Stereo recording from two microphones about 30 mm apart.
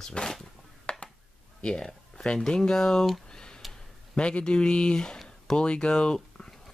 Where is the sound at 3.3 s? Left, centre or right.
Left.